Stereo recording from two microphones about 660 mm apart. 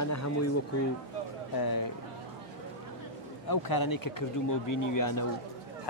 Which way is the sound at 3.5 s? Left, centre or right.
Left.